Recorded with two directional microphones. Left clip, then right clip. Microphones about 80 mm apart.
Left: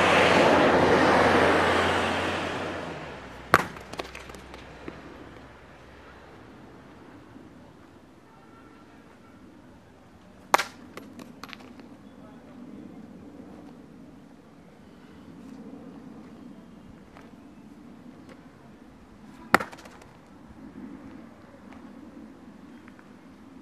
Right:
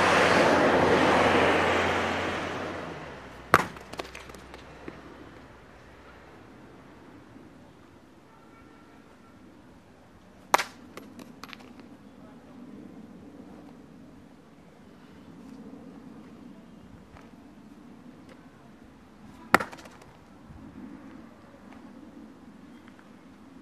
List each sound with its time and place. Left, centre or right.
0.0 s vehicle: right
0.8 s vehicle: centre; by 3.5 s left
3.5 s chop: centre
10.5 s a sound: centre
19.5 s chop: centre